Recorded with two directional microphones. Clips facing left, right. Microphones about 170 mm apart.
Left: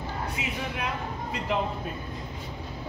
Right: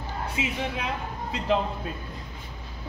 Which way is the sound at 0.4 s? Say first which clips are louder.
Right 4 dB; 20° right (ahead or behind).